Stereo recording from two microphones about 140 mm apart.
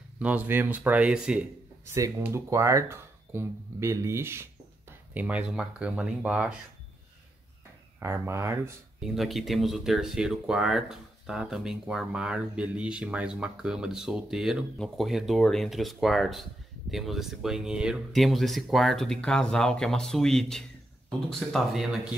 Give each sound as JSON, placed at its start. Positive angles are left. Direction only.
{"t": 0.2, "sound": "speech", "side_deg": -10}
{"t": 1.9, "sound": "speech", "side_deg": -20}
{"t": 8.0, "sound": "speech", "side_deg": -20}
{"t": 9.0, "sound": "speech", "side_deg": 0}